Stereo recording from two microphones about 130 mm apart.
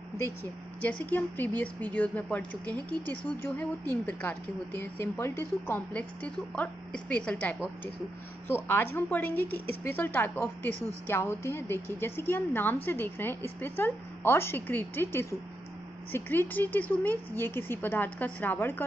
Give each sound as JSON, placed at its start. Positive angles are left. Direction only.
{"t": 0.2, "sound": "speech", "side_deg": 15}